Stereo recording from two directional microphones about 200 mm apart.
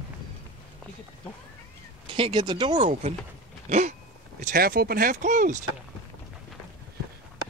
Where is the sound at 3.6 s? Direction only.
35° right (ahead or behind).